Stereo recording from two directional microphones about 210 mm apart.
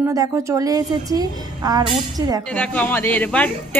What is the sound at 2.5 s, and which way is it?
Speech, 5° left (ahead or behind).